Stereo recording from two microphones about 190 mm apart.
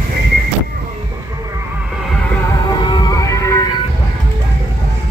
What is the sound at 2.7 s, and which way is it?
Music, 25° left (ahead or behind).